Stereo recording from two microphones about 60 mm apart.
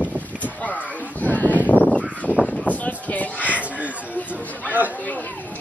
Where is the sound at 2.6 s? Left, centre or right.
Left.